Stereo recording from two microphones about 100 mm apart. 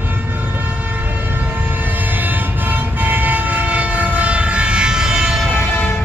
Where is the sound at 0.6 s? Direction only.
15° right (ahead or behind).